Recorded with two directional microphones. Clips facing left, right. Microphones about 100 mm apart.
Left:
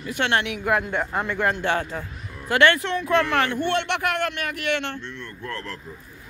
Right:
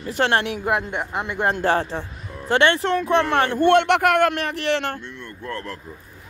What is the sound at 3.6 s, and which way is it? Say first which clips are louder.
Speech: right 8 dB; 55° right (ahead or behind).